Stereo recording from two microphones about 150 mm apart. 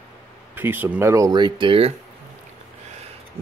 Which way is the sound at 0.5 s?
15° right (ahead or behind).